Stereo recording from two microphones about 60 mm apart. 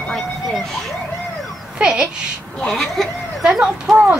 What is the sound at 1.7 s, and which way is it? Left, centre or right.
Speech, centre.